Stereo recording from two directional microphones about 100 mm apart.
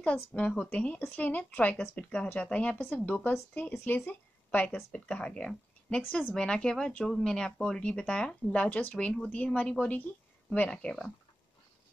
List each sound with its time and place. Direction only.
0.0 s speech: 15° left (ahead or behind)